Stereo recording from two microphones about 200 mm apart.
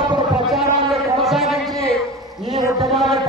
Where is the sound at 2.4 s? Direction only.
20° right (ahead or behind).